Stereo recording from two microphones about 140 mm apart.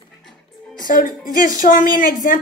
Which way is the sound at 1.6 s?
75° left (ahead or behind).